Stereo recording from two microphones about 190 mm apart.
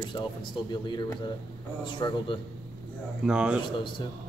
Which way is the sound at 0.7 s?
25° left (ahead or behind).